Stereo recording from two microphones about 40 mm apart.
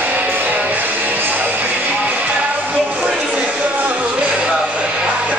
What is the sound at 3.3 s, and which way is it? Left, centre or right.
Music, right.